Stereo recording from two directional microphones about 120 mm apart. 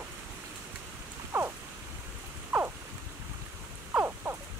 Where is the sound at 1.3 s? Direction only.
20° right (ahead or behind).